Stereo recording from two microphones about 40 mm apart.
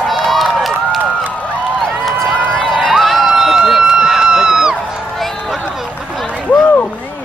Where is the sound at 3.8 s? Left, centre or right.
Centre.